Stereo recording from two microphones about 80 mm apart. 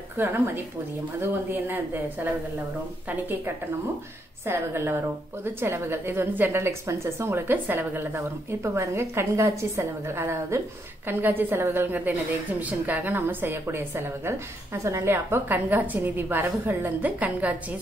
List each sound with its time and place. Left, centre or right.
0.2 s a woman's voice: right